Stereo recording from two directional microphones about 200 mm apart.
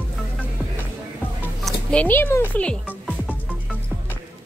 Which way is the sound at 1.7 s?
5° left (ahead or behind).